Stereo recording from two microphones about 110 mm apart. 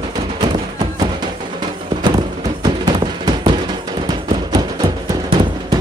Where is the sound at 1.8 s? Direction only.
40° right (ahead or behind).